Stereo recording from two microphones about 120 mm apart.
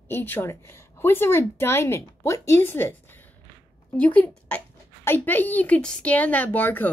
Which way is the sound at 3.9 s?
10° left (ahead or behind).